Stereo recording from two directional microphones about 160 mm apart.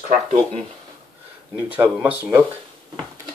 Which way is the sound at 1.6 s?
10° right (ahead or behind).